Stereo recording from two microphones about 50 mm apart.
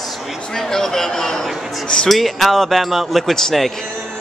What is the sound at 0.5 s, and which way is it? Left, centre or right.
Speech, centre.